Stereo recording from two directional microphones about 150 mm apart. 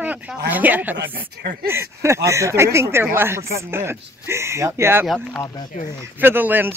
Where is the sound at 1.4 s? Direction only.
90° right.